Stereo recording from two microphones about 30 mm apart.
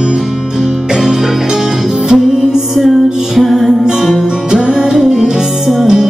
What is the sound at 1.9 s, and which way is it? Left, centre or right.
Music, right.